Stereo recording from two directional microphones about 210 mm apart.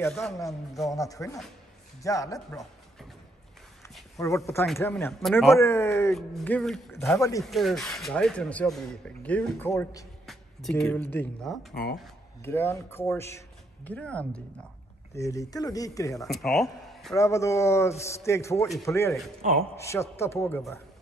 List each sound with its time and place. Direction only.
0.0 s speech: centre (ahead or behind)
0.9 s a man's voice: 15° left (ahead or behind)
4.2 s a man's voice: 15° left (ahead or behind)
7.4 s speech: centre (ahead or behind)
11.7 s speech: 50° left (ahead or behind)
12.4 s a man's voice: 10° left (ahead or behind)
16.3 s speech: centre (ahead or behind)
17.1 s a man's voice: 15° left (ahead or behind)